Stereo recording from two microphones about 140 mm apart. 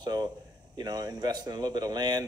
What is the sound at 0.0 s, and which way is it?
A man's voice, 30° right (ahead or behind).